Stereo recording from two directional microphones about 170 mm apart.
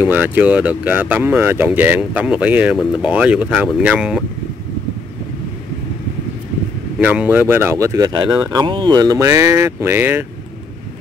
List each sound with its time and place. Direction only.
0.0 s speech: 10° right (ahead or behind)
7.0 s speech: 10° right (ahead or behind)